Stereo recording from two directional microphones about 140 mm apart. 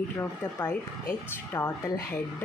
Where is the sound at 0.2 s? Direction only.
15° left (ahead or behind).